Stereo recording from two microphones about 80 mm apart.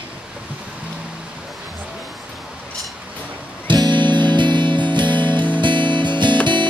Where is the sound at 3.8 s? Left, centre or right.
Right.